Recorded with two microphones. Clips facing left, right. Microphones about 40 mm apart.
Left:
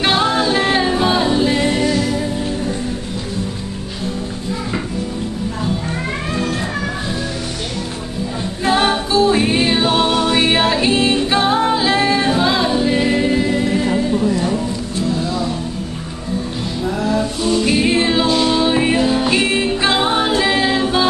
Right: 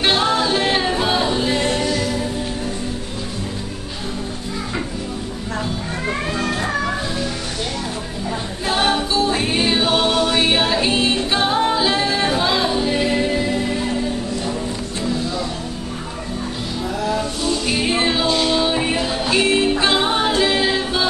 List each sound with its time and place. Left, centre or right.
0.0 s music: centre
0.8 s a capella: centre
1.8 s music: centre
8.6 s music: centre
11.2 s singing: centre
11.7 s music: centre
12.1 s singing: centre
17.0 s music: centre
19.6 s music: centre